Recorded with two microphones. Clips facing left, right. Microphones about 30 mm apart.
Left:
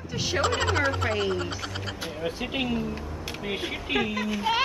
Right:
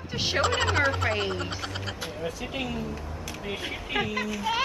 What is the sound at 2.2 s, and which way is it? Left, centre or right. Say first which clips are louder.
Speech: left 4 dB; left.